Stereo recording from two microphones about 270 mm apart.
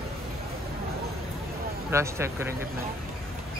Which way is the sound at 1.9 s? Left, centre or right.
Centre.